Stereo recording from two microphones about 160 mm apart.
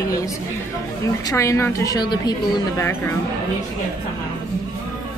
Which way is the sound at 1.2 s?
20° left (ahead or behind).